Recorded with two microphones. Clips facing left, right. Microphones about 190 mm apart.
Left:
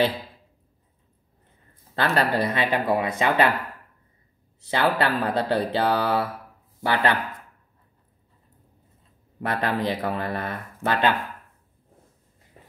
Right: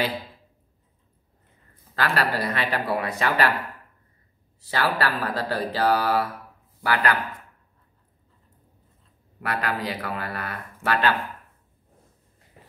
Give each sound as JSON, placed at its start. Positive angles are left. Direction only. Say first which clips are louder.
{"t": 2.0, "sound": "speech", "louder": "left 3 dB", "side_deg": 25}
{"t": 4.6, "sound": "speech", "louder": "left 3 dB", "side_deg": 20}
{"t": 9.4, "sound": "speech", "louder": "left 3 dB", "side_deg": 25}